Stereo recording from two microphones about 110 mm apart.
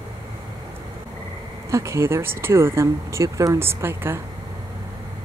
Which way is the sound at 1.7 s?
25° right (ahead or behind).